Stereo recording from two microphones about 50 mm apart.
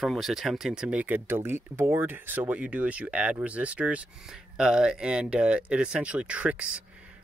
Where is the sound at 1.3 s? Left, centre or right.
Right.